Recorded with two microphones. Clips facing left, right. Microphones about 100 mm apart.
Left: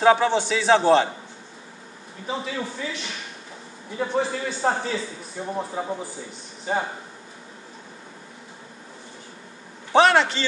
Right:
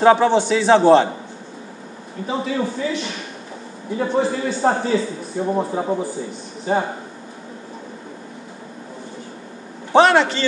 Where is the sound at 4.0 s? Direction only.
10° right (ahead or behind).